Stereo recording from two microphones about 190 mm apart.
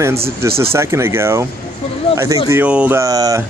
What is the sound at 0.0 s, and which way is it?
Speech, 15° right (ahead or behind).